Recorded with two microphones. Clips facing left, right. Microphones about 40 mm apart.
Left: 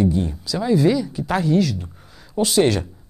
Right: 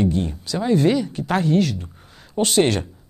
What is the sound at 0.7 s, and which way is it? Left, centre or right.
Speech, right.